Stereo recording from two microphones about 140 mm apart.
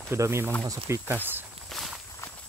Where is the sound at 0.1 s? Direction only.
20° right (ahead or behind).